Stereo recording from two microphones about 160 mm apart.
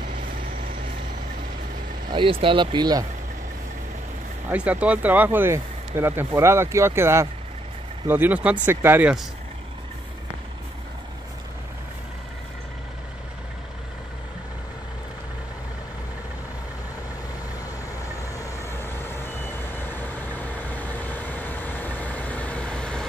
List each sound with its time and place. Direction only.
2.0 s speech: 30° right (ahead or behind)
4.5 s speech: 10° right (ahead or behind)
18.3 s reversing beeps: 20° left (ahead or behind)